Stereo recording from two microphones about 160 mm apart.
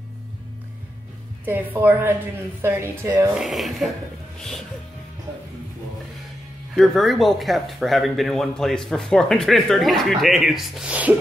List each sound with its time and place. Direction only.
1.4 s a woman's voice: 10° right (ahead or behind)
3.3 s speech: centre (ahead or behind)
6.7 s speech: centre (ahead or behind)